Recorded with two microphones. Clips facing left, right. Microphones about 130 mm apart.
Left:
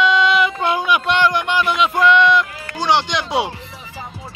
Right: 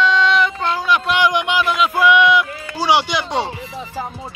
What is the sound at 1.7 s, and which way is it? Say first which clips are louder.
A man's voice: even; 5° right (ahead or behind).